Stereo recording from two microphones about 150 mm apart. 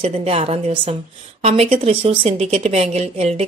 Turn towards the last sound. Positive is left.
turn(degrees=-45)  # may be behind; listen again after turning